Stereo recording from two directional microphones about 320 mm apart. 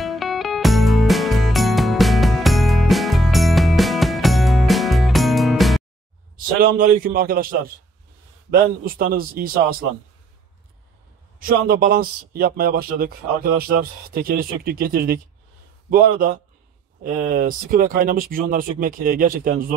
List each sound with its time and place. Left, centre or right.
0.0 s music: centre
6.3 s speech: right
11.3 s speech: right